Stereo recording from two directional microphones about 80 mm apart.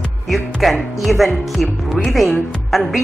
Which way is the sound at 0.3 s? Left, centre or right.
Centre.